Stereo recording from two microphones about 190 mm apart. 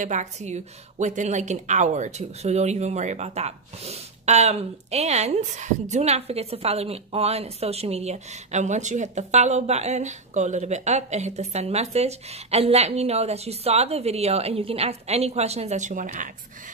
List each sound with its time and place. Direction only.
0.0 s a woman's voice: 40° right (ahead or behind)